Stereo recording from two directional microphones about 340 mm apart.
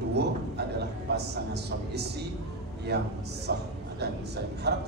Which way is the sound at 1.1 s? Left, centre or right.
Right.